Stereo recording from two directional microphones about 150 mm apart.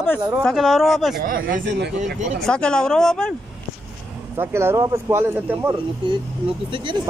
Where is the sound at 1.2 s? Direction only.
70° right (ahead or behind).